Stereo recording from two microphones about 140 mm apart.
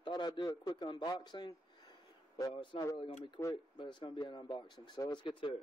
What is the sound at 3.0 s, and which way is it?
Speech, 45° left (ahead or behind).